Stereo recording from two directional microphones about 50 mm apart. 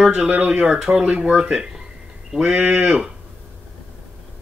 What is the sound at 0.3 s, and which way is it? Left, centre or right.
Speech, right.